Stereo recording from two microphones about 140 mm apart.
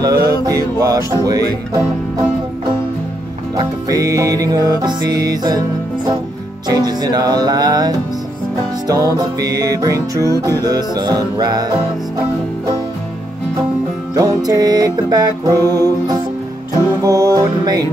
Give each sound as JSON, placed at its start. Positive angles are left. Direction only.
{"t": 0.0, "sound": "music", "side_deg": -25}
{"t": 3.5, "sound": "music", "side_deg": -25}
{"t": 6.7, "sound": "music", "side_deg": -30}
{"t": 14.1, "sound": "music", "side_deg": -25}